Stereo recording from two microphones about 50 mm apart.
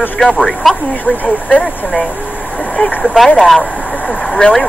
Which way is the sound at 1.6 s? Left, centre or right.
Centre.